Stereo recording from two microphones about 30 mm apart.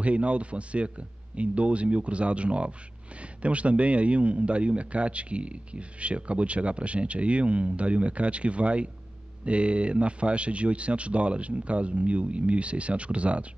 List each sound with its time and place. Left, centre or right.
0.0 s a man's voice: right